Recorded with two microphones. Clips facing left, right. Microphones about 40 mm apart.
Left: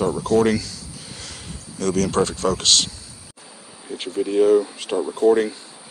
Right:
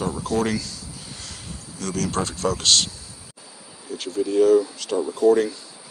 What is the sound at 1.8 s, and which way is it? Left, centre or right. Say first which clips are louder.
Speech: left 6 dB; left.